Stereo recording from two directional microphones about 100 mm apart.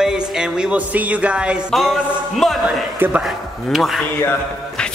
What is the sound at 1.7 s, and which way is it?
A man's voice, centre (ahead or behind).